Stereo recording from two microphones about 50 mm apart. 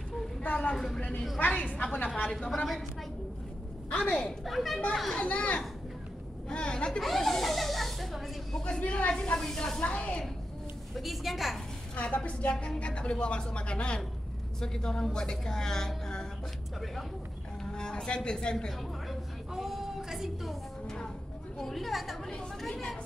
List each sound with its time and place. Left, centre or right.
0.7 s speech: centre
1.5 s a woman's voice: left
2.5 s speech: centre
3.9 s a woman's voice: left
4.5 s a woman's voice: centre
5.1 s a woman's voice: left
7.0 s speech: centre
8.6 s a woman's voice: left
9.1 s speech: centre
11.0 s a woman's voice: centre
11.9 s a woman's voice: left
17.7 s speech: centre
19.5 s a sound: centre
21.5 s a woman's voice: centre